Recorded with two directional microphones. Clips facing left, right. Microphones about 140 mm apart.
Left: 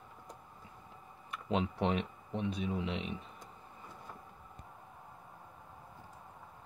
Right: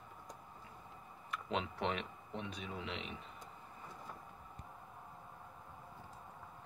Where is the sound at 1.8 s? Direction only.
25° left (ahead or behind).